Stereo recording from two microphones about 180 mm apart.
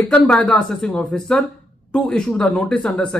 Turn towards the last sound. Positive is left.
turn(degrees=5)  # may be behind; listen again after turning